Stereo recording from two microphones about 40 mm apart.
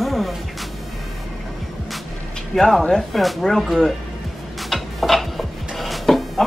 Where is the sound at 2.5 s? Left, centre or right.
Centre.